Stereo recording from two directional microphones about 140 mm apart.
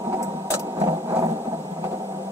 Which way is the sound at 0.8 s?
25° right (ahead or behind).